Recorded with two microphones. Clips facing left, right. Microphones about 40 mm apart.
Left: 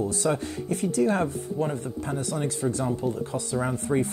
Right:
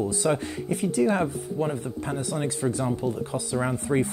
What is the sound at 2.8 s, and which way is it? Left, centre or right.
Speech, centre.